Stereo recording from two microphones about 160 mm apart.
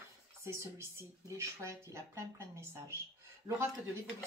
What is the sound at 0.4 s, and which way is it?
Speech, 15° right (ahead or behind).